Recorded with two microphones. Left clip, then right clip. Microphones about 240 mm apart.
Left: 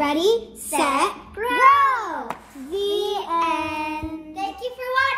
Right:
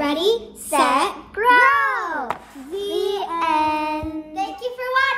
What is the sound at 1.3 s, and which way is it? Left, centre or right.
Babbling, right.